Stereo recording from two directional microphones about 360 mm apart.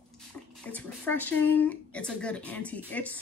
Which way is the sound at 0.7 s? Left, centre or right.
Centre.